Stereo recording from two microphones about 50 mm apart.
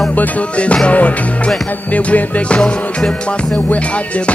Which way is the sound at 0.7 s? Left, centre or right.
Left.